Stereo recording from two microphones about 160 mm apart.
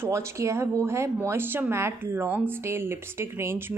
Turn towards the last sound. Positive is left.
turn(degrees=-15)  # may be behind; listen again after turning